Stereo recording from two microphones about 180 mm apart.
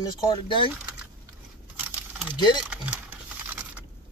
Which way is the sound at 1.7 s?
10° right (ahead or behind).